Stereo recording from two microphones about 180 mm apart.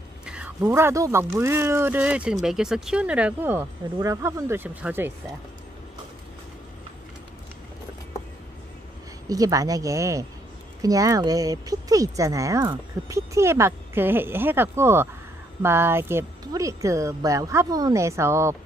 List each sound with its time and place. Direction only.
0.2 s a sound: 5° right (ahead or behind)
0.6 s speech: 15° right (ahead or behind)
9.3 s speech: 20° right (ahead or behind)